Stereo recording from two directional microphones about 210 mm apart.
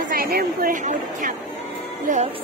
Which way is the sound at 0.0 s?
45° right (ahead or behind).